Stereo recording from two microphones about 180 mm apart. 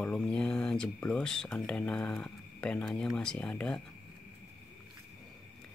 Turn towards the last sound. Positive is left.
turn(degrees=5)  # may be behind; listen again after turning